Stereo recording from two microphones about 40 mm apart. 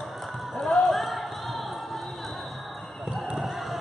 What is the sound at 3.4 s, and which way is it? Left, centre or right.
Crowd, centre.